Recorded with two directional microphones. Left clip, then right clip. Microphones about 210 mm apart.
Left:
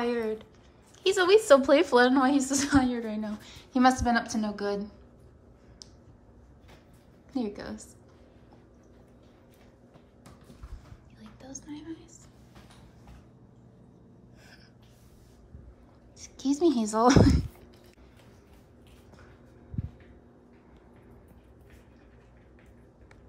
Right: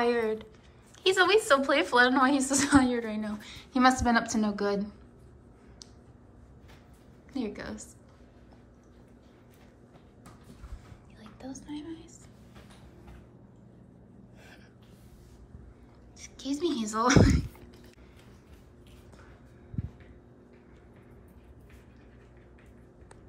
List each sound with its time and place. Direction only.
0.0 s a woman's voice: 15° left (ahead or behind)
7.3 s a woman's voice: 20° left (ahead or behind)
11.1 s whispering: 5° left (ahead or behind)
16.2 s a woman's voice: 30° left (ahead or behind)